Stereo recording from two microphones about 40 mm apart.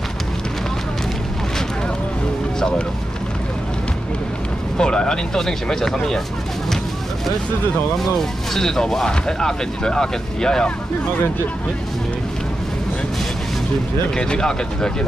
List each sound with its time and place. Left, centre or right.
4.7 s speech: centre
8.0 s speech: centre
14.1 s speech: left